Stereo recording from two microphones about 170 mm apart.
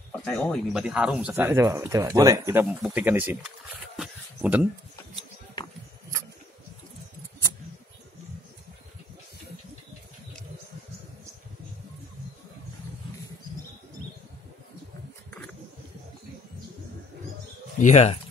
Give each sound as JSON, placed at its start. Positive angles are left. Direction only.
{"t": 0.2, "sound": "speech", "side_deg": 5}
{"t": 1.3, "sound": "speech", "side_deg": -15}
{"t": 3.8, "sound": "a sound", "side_deg": -5}
{"t": 17.7, "sound": "speech", "side_deg": 45}